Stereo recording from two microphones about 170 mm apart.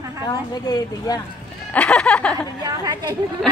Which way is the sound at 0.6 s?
20° left (ahead or behind).